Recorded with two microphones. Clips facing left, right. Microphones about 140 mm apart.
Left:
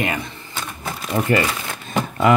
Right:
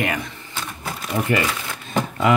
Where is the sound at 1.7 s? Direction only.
50° left (ahead or behind).